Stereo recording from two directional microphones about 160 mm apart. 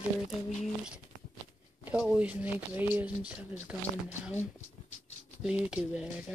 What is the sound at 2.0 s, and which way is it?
Speech, 10° right (ahead or behind).